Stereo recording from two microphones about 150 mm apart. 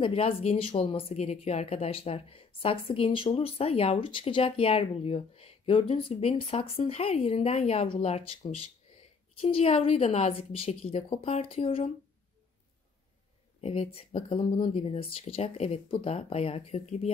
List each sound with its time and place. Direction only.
0.0 s speech: 40° left (ahead or behind)
13.6 s speech: 40° left (ahead or behind)